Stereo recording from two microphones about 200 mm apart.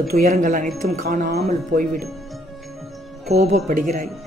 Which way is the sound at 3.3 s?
35° right (ahead or behind).